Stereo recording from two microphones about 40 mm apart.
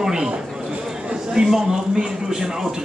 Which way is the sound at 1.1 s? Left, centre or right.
Centre.